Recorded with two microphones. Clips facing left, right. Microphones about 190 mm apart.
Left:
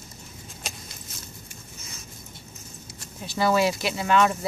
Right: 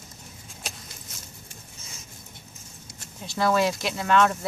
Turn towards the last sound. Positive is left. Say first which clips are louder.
# even
turn(degrees=5)  # may be behind; listen again after turning